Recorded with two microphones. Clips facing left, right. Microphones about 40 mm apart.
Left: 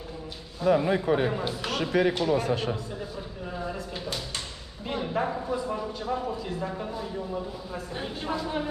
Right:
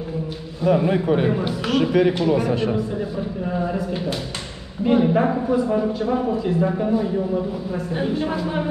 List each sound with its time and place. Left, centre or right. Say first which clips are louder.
0.7 s a man's voice: right 5 dB; right
1.2 s a woman's voice: right 6 dB; centre
1.7 s speech: right 8 dB; right
2.2 s a man's voice: right 6 dB; right
3.7 s a woman's voice: right 9 dB; centre